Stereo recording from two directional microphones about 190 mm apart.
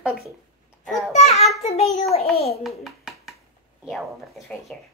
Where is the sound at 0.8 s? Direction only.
Centre (ahead or behind).